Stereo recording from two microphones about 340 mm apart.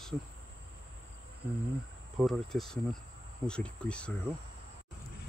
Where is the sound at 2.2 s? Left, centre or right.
Centre.